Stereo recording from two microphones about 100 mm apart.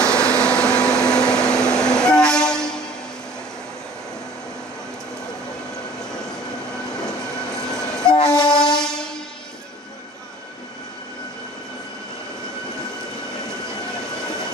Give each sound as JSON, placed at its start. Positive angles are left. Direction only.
{"t": 0.0, "sound": "vacuum cleaner", "side_deg": 10}
{"t": 7.1, "sound": "train", "side_deg": 5}
{"t": 8.2, "sound": "train", "side_deg": 45}
{"t": 8.5, "sound": "train", "side_deg": 5}
{"t": 13.7, "sound": "train", "side_deg": 5}